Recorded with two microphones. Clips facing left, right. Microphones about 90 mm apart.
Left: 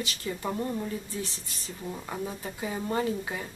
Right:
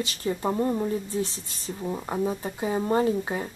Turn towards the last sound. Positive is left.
turn(degrees=-30)  # may be behind; listen again after turning